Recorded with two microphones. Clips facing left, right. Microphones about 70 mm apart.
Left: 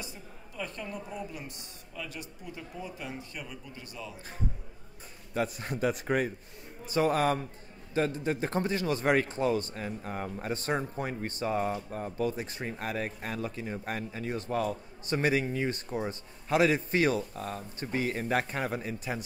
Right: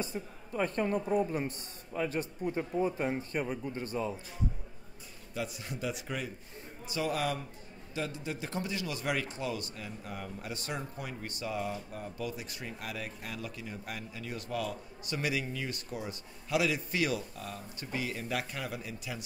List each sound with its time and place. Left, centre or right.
0.0 s speech: right
5.3 s a man's voice: left